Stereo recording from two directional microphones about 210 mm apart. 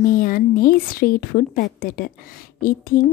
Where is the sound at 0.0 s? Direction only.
45° left (ahead or behind).